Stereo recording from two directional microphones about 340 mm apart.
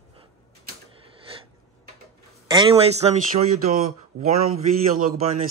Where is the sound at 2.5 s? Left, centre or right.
Centre.